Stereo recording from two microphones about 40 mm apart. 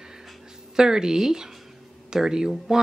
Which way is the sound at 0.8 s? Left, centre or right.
Centre.